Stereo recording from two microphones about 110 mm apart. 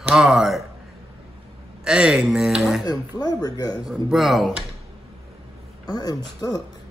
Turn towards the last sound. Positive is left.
turn(degrees=35)  # may be behind; listen again after turning